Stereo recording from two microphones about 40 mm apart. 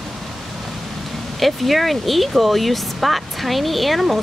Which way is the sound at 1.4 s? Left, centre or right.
Centre.